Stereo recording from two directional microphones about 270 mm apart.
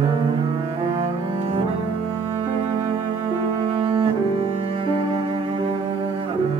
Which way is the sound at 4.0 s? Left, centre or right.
Centre.